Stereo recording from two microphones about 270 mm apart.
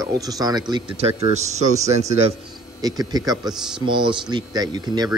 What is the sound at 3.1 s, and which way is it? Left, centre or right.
Speech, centre.